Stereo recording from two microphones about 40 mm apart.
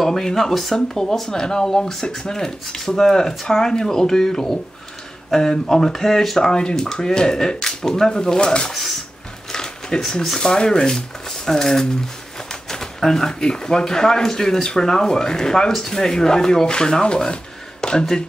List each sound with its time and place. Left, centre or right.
0.0 s speech: centre